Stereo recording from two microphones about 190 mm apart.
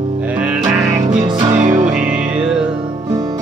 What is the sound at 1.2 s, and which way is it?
Music, 30° right (ahead or behind).